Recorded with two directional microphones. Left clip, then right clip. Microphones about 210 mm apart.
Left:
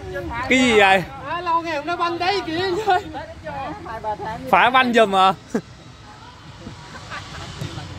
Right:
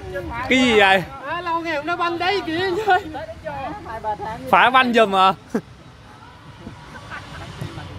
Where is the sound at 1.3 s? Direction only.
25° right (ahead or behind).